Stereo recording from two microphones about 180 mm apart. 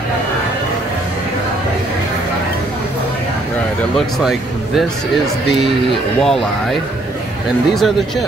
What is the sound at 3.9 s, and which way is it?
Speech, centre (ahead or behind).